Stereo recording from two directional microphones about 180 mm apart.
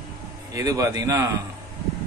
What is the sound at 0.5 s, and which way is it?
Speech, 20° right (ahead or behind).